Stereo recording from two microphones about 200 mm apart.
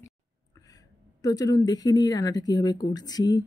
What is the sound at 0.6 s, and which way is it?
Speech, 15° left (ahead or behind).